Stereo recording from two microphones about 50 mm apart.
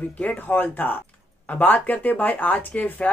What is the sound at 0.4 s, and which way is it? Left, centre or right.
Speech, left.